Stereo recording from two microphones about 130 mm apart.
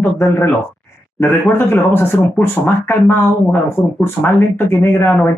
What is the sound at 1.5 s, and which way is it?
Speech, 15° left (ahead or behind).